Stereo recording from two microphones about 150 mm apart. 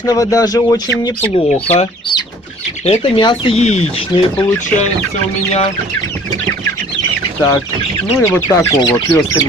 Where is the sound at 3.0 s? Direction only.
30° left (ahead or behind).